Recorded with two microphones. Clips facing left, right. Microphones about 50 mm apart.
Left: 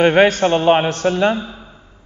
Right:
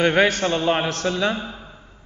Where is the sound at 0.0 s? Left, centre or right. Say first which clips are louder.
Left 5 dB; left.